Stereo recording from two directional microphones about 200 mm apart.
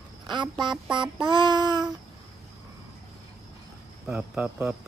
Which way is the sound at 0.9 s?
25° right (ahead or behind).